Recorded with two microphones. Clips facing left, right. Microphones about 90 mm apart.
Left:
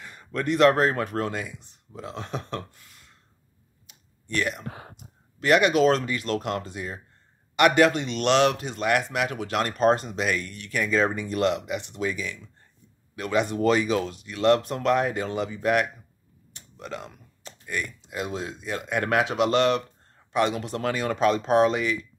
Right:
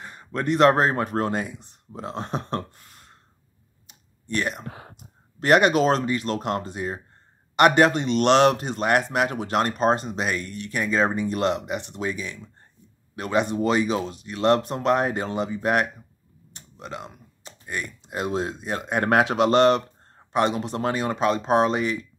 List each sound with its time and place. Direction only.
0.0 s speech: 30° right (ahead or behind)
3.8 s clicking: 30° right (ahead or behind)
5.4 s speech: 40° right (ahead or behind)
16.5 s a sound: 20° right (ahead or behind)
18.0 s speech: 45° right (ahead or behind)